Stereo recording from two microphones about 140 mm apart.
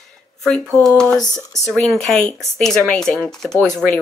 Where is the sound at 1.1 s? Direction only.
25° left (ahead or behind).